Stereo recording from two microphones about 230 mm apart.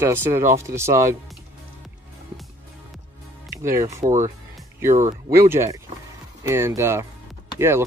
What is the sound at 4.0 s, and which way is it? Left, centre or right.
Speech, right.